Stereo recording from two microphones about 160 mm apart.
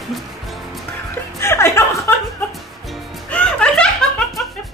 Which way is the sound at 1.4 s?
15° left (ahead or behind).